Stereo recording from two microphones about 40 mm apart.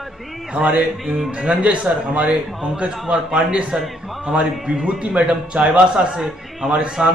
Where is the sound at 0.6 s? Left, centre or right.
Right.